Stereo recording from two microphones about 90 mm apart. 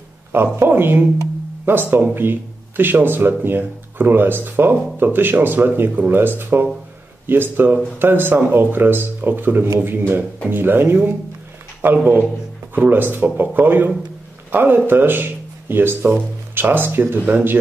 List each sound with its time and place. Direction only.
0.6 s speech: 25° right (ahead or behind)